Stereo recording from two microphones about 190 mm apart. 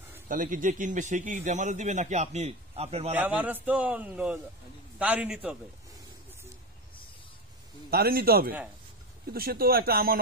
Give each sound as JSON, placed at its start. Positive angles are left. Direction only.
{"t": 0.3, "sound": "a man's voice", "side_deg": -45}
{"t": 3.1, "sound": "a man's voice", "side_deg": -10}
{"t": 7.9, "sound": "speech", "side_deg": -55}